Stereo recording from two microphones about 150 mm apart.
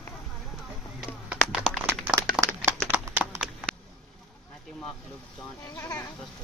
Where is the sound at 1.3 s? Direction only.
10° right (ahead or behind).